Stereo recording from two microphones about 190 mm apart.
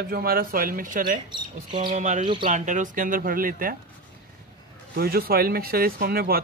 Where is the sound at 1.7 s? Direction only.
25° right (ahead or behind).